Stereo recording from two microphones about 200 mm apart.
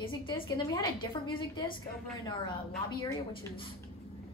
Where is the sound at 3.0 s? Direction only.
25° left (ahead or behind).